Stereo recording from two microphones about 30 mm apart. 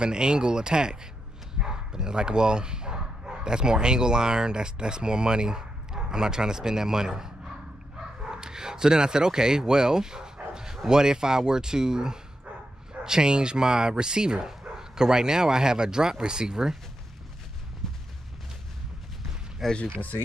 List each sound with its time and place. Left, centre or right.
0.0 s speech: right
8.2 s bow-wow: right
10.9 s speech: right
17.8 s a sound: centre
19.6 s speech: centre